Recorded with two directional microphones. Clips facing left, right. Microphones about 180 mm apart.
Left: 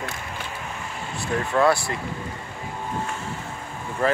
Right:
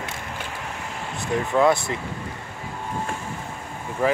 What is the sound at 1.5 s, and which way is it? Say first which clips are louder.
Speech: right 1 dB; 20° right (ahead or behind).